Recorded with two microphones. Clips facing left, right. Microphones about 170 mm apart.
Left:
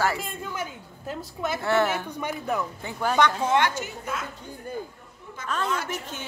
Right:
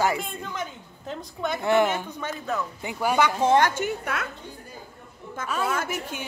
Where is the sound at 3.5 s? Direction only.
45° right (ahead or behind).